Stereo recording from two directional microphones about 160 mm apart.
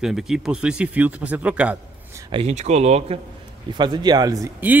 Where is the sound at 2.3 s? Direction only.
40° right (ahead or behind).